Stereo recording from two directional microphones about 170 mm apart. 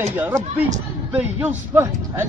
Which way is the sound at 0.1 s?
10° right (ahead or behind).